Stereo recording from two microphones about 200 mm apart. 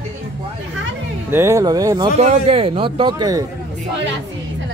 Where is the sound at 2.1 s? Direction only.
30° right (ahead or behind).